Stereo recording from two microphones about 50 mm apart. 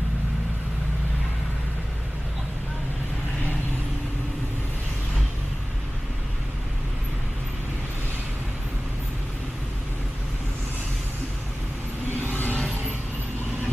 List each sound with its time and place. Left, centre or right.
12.3 s vehicle: left